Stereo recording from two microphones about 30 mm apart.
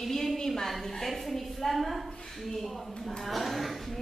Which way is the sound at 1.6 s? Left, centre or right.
Centre.